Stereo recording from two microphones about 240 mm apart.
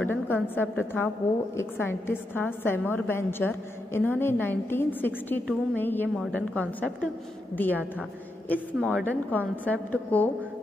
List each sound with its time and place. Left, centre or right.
0.0 s a woman's voice: centre
8.7 s a woman's voice: centre
9.0 s a woman's voice: centre